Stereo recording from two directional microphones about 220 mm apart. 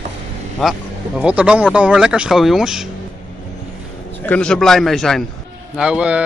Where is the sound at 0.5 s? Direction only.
Centre (ahead or behind).